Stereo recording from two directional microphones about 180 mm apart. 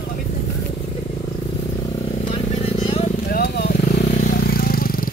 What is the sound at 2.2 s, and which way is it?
Vehicle, 35° left (ahead or behind).